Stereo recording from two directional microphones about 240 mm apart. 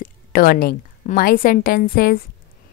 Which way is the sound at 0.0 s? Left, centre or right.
Left.